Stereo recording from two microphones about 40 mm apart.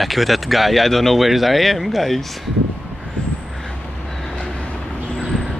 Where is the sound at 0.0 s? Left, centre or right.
Centre.